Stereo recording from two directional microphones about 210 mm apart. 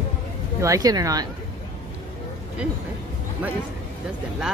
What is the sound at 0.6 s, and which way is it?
Speech, 15° right (ahead or behind).